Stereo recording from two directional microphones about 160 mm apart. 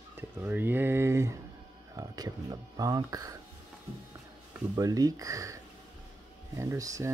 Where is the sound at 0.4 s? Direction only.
10° right (ahead or behind).